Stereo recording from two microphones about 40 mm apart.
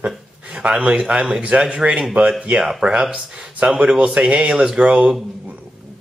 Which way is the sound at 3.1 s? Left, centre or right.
Centre.